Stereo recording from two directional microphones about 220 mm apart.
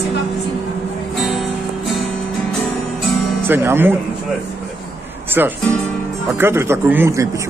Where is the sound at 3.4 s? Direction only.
10° right (ahead or behind).